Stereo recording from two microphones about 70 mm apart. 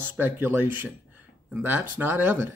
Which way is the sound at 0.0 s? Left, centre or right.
Right.